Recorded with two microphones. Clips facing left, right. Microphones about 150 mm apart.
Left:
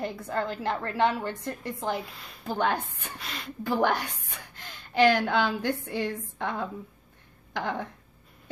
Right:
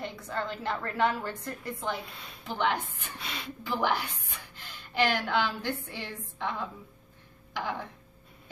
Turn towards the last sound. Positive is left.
turn(degrees=55)  # may be behind; listen again after turning